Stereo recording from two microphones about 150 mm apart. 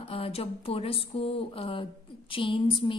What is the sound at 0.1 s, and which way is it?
A woman's voice, 40° left (ahead or behind).